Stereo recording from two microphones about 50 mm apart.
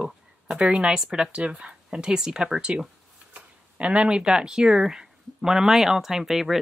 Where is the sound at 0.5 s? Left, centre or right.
Centre.